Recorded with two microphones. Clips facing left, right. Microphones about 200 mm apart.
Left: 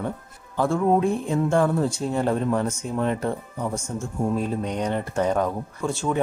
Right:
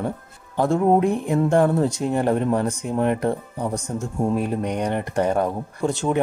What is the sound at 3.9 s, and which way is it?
Speech, 15° right (ahead or behind).